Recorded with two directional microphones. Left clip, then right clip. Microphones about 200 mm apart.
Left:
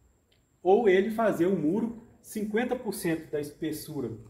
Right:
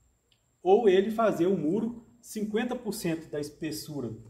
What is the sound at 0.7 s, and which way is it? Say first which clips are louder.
Speech: even; 5° left (ahead or behind).